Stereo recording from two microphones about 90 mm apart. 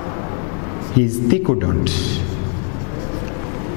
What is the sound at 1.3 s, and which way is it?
Speech, 10° left (ahead or behind).